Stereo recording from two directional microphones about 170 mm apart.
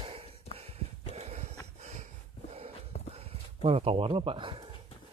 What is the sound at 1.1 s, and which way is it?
Walk, 40° right (ahead or behind).